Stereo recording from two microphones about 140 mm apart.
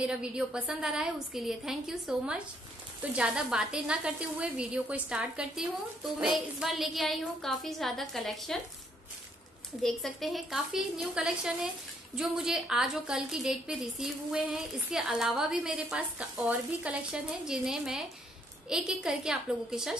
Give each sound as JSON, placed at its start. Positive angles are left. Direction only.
{"t": 0.0, "sound": "a woman's voice", "side_deg": -5}
{"t": 9.8, "sound": "a woman's voice", "side_deg": 0}